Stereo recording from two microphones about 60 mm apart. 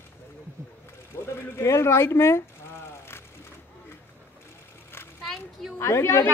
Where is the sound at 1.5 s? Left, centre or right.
Left.